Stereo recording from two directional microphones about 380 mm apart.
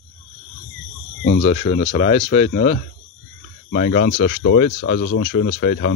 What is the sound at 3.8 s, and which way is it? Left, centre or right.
Speech, left.